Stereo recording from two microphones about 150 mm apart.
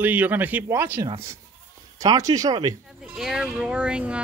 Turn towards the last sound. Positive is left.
turn(degrees=-5)  # may be behind; listen again after turning